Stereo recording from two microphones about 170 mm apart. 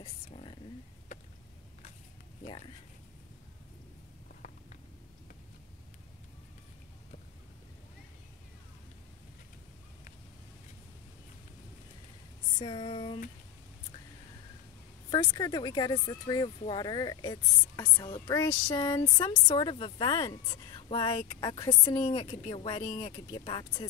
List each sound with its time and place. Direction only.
0.3 s speech: 35° left (ahead or behind)
12.5 s speech: 30° left (ahead or behind)
15.0 s speech: 25° left (ahead or behind)
18.0 s speech: 30° left (ahead or behind)
18.8 s speech: 20° left (ahead or behind)